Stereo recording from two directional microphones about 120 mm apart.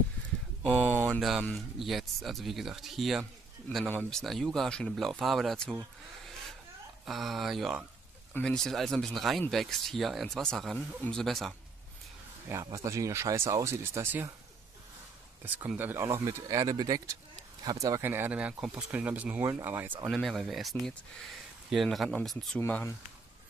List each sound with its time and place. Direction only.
1.0 s a sound: centre (ahead or behind)
1.8 s speech: centre (ahead or behind)
7.1 s speech: centre (ahead or behind)
8.3 s speech: 10° left (ahead or behind)
12.6 s speech: 25° right (ahead or behind)
15.4 s speech: 15° right (ahead or behind)
18.0 s speech: 15° right (ahead or behind)
20.1 s speech: centre (ahead or behind)
22.6 s speech: 15° left (ahead or behind)